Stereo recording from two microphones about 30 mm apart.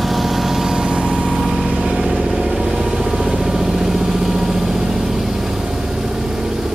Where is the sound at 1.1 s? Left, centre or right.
Centre.